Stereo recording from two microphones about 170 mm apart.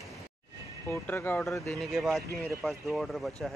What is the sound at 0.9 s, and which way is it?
Speech, 10° left (ahead or behind).